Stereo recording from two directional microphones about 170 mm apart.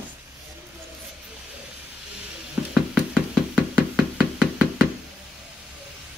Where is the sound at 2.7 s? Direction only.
5° right (ahead or behind).